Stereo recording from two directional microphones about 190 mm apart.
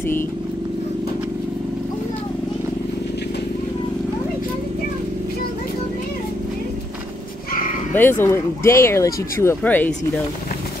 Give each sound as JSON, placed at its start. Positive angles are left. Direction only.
{"t": 7.9, "sound": "speech", "side_deg": 10}